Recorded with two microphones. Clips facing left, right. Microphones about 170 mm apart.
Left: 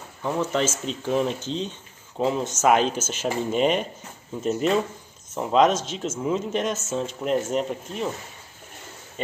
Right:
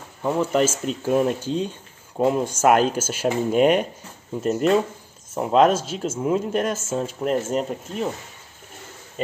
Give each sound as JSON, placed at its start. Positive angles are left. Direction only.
{"t": 0.2, "sound": "speech", "side_deg": -10}